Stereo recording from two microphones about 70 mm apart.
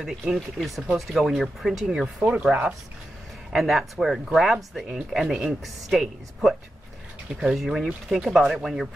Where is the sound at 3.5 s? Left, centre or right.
Centre.